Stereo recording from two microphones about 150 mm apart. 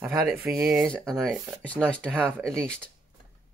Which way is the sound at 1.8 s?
5° right (ahead or behind).